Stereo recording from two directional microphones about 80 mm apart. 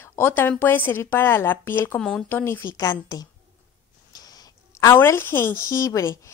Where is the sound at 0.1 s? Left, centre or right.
Left.